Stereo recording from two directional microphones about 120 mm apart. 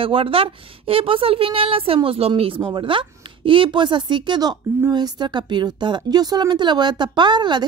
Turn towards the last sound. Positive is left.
turn(degrees=-40)  # may be behind; listen again after turning